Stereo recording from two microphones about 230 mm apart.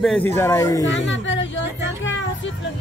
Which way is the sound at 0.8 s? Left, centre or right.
Left.